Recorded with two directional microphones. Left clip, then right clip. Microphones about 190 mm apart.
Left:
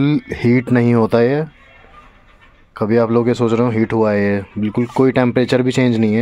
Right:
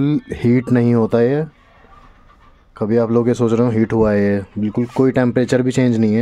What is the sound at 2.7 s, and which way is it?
Speech, 10° right (ahead or behind).